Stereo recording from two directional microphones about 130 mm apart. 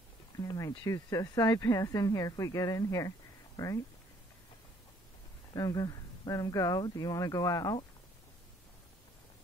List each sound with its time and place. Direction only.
0.4 s speech: 30° left (ahead or behind)
5.5 s speech: 30° left (ahead or behind)